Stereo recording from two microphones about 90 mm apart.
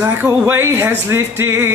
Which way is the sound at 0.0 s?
25° right (ahead or behind).